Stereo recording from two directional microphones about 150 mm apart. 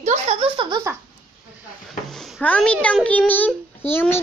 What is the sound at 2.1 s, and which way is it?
A child's voice, centre (ahead or behind).